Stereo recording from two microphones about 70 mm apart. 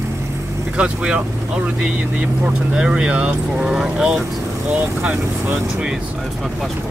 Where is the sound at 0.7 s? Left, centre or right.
Centre.